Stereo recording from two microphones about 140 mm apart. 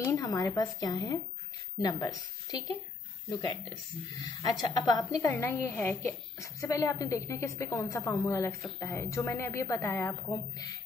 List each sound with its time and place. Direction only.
0.1 s a woman's voice: 25° left (ahead or behind)